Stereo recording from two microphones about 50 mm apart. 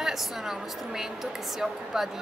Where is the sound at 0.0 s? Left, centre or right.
Centre.